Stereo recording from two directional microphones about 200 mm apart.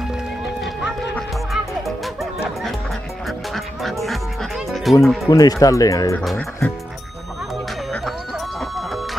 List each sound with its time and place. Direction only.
1.1 s music: centre (ahead or behind)
3.3 s music: centre (ahead or behind)
5.0 s speech: centre (ahead or behind)
5.3 s speech: 15° left (ahead or behind)
6.2 s speech: 5° left (ahead or behind)
8.5 s music: centre (ahead or behind)